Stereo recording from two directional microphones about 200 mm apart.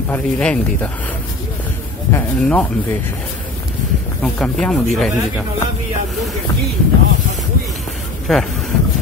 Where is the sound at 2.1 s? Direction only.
5° left (ahead or behind).